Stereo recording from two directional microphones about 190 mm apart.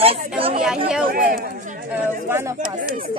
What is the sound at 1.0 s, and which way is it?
Speech, 50° right (ahead or behind).